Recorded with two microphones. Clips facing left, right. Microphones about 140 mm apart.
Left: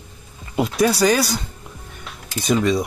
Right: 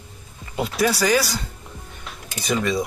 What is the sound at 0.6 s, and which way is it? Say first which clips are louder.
Speech: left 4 dB; 25° left (ahead or behind).